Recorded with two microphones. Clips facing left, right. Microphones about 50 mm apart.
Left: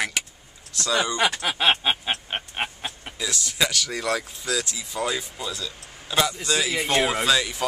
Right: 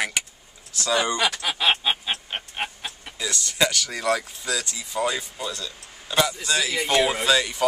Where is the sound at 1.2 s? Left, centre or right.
Left.